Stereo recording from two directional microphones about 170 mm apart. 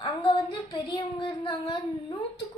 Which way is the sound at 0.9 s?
30° left (ahead or behind).